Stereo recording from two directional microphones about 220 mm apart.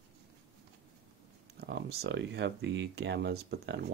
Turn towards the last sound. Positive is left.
turn(degrees=-50)  # may be behind; listen again after turning